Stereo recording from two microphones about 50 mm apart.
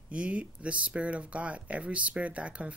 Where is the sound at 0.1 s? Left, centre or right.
Right.